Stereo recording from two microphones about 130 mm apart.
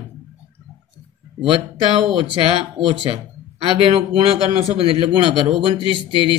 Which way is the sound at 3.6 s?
45° right (ahead or behind).